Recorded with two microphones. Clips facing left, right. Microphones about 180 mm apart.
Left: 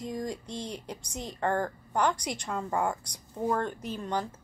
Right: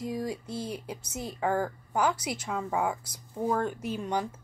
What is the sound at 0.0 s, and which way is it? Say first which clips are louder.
Speech: right 2 dB; 5° right (ahead or behind).